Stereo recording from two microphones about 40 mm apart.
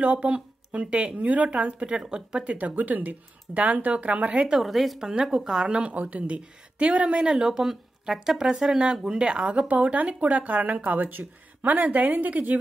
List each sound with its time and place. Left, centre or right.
0.7 s speech: right
2.4 s speech: right
4.6 s speech: centre
5.7 s speech: right
7.2 s speech: centre
7.6 s speech: centre; by 12.5 s right